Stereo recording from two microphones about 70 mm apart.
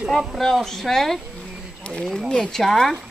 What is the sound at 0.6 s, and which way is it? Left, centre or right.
Speech, centre.